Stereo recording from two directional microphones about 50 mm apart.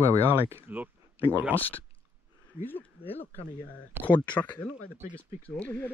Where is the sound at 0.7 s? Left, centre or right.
Right.